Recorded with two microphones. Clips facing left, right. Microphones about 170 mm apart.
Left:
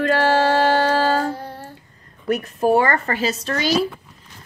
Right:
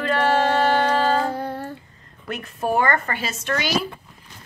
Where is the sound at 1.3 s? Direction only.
55° right (ahead or behind).